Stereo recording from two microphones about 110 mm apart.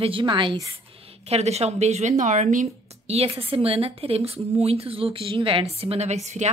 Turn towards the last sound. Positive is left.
turn(degrees=-90)